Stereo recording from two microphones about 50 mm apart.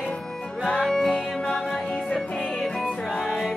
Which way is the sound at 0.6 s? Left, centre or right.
Centre.